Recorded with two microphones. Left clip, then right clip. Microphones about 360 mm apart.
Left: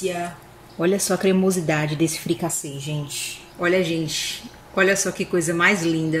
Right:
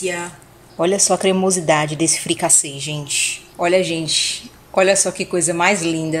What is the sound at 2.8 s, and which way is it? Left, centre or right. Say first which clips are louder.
Speech: right 6 dB; right.